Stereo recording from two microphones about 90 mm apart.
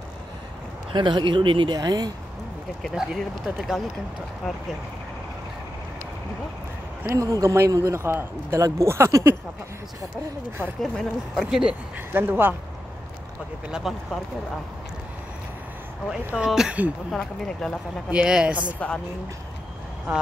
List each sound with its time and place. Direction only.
0.9 s speech: 60° right (ahead or behind); by 2.1 s 45° right (ahead or behind)
2.9 s speech: 5° right (ahead or behind)
7.1 s a man's voice: 40° right (ahead or behind)
8.5 s a man's voice: 35° right (ahead or behind)
10.8 s speech: centre (ahead or behind)
12.1 s speech: 25° right (ahead or behind)
13.7 s a woman's voice: 10° right (ahead or behind)
16.3 s a woman's voice: 5° right (ahead or behind)
17.1 s speech: 10° left (ahead or behind)
18.1 s a woman's voice: 10° right (ahead or behind)
20.1 s a woman's voice: 15° right (ahead or behind)